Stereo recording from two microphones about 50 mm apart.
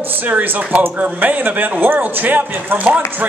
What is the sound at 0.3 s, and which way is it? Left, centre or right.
Speech, right.